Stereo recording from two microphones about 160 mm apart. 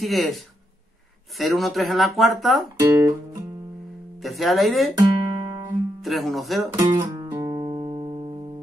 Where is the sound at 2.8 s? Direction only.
20° right (ahead or behind).